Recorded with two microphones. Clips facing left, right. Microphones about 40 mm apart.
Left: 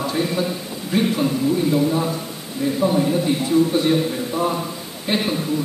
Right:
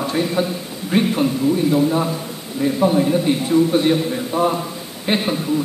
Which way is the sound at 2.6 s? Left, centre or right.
Right.